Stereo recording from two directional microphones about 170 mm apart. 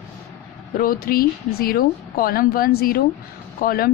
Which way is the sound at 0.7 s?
55° left (ahead or behind).